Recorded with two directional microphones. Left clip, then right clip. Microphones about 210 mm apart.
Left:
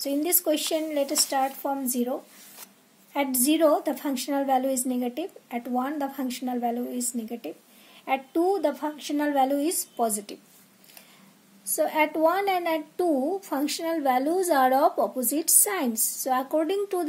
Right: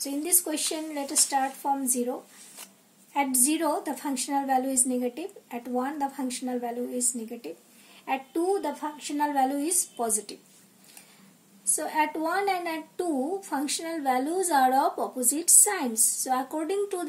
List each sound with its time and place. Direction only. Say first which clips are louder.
0.0 s a woman's voice: left 4 dB; 45° left (ahead or behind)
11.7 s a woman's voice: left 3 dB; 40° left (ahead or behind)